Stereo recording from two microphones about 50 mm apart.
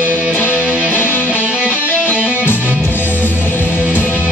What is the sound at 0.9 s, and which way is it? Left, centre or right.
Music, left.